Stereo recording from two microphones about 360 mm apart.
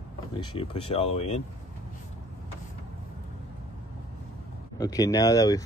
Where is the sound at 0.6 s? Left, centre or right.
Centre.